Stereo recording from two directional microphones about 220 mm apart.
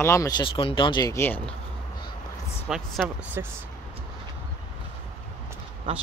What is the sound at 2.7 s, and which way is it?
Speech, centre (ahead or behind).